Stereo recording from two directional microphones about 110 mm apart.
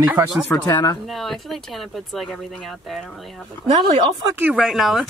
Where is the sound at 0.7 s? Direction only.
35° left (ahead or behind).